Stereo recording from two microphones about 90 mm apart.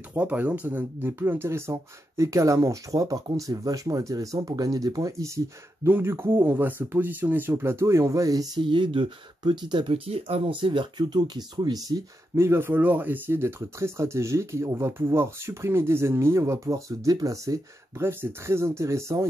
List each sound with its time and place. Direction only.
0.1 s speech: 15° right (ahead or behind); by 5.4 s 35° right (ahead or behind)
5.9 s speech: 25° right (ahead or behind); by 8.5 s 40° right (ahead or behind)
8.5 s speech: 65° right (ahead or behind)
12.4 s speech: 25° right (ahead or behind)